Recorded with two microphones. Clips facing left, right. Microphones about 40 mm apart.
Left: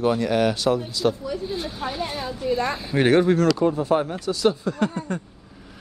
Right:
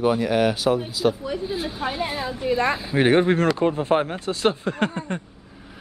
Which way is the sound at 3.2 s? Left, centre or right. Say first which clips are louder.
Left 1 dB; right.